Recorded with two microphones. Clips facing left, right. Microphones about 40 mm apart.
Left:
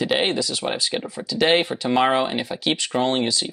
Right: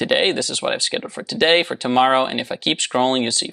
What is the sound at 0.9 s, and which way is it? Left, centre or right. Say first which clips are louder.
Speech: right 2 dB; right.